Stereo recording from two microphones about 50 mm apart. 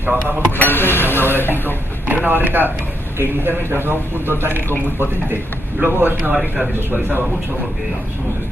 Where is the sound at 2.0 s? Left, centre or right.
Right.